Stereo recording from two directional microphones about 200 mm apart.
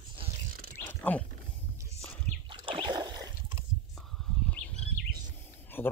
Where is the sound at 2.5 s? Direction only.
25° right (ahead or behind).